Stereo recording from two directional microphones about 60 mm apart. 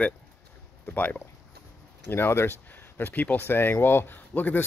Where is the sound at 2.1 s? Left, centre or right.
Left.